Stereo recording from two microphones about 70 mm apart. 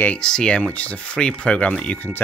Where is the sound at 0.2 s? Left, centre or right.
Centre.